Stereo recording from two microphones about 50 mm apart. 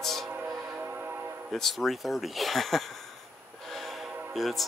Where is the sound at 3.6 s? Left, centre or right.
Centre.